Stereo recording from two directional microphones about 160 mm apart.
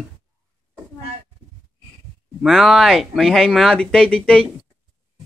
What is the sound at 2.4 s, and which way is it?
Speech, centre (ahead or behind).